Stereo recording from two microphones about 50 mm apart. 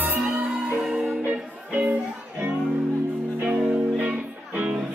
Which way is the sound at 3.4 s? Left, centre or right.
Right.